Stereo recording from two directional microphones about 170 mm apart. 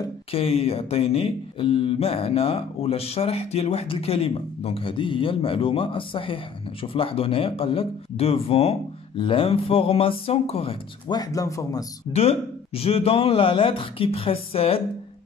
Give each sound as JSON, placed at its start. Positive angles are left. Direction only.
{"t": 0.3, "sound": "speech", "side_deg": 35}
{"t": 12.1, "sound": "speech", "side_deg": 35}